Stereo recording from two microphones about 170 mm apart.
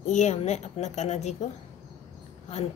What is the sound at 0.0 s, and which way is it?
Speech, 45° left (ahead or behind).